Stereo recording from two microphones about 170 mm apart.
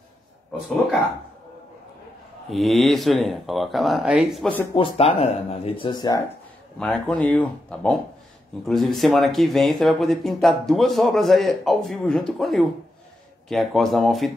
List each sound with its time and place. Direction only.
2.5 s speech: centre (ahead or behind)
4.7 s speech: 35° left (ahead or behind)
6.8 s speech: 5° left (ahead or behind)